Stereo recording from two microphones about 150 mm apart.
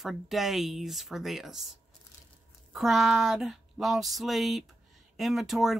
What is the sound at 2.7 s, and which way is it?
Speech, centre (ahead or behind).